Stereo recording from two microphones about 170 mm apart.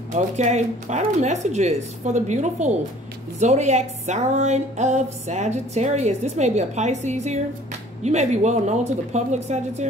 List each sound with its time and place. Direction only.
0.1 s a woman's voice: 45° right (ahead or behind)